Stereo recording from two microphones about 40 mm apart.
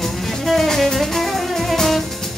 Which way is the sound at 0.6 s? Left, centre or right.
Centre.